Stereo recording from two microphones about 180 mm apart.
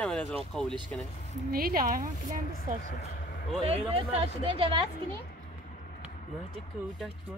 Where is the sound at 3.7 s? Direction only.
35° right (ahead or behind).